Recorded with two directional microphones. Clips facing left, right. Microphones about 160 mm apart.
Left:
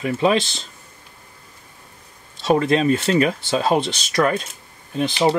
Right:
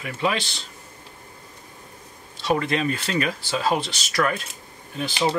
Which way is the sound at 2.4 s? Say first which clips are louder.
Left 6 dB; 30° left (ahead or behind).